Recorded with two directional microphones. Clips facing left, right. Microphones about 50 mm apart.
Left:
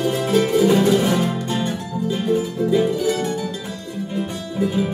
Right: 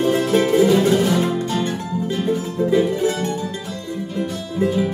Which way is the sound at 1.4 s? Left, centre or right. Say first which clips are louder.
Right 1 dB; left.